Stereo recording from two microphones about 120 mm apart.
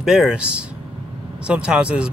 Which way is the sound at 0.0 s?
5° right (ahead or behind).